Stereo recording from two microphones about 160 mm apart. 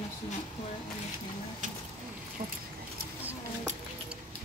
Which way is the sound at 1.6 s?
50° right (ahead or behind).